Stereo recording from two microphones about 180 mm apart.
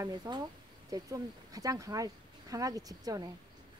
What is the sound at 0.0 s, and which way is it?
Speech, 20° right (ahead or behind).